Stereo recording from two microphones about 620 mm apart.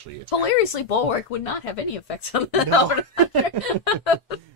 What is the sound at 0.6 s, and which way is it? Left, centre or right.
Speech, left.